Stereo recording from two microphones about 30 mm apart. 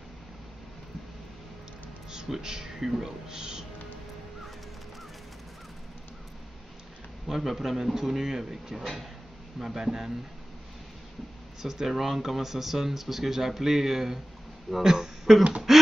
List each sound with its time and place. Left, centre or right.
2.2 s speech: centre
7.2 s speech: centre
11.6 s speech: centre
15.7 s a sound: centre